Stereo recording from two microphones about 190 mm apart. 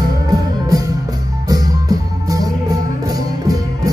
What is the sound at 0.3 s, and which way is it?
Music, 20° right (ahead or behind).